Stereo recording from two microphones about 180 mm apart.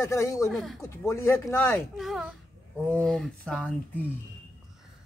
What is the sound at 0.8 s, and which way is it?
Speech, 15° left (ahead or behind).